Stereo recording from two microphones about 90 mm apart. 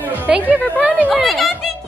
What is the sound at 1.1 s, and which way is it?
Speech, centre (ahead or behind).